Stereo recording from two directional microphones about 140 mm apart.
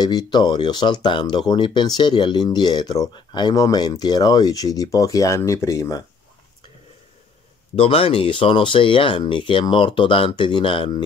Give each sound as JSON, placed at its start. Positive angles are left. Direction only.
{"t": 0.0, "sound": "speech", "side_deg": 30}
{"t": 7.7, "sound": "speech", "side_deg": 45}